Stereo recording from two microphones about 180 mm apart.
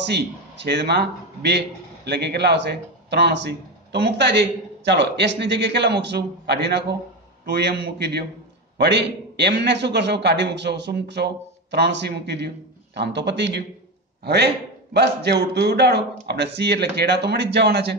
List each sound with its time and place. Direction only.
0.0 s a man's voice: 70° right (ahead or behind)